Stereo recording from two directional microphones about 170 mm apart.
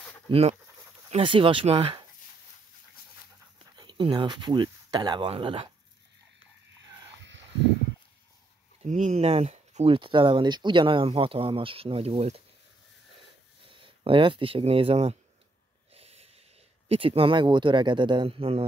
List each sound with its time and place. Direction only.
0.3 s speech: 35° right (ahead or behind)
3.7 s speech: 30° right (ahead or behind)
8.8 s speech: 45° right (ahead or behind)
13.7 s speech: 30° right (ahead or behind)
15.9 s snort: 35° right (ahead or behind)
16.9 s speech: 35° right (ahead or behind)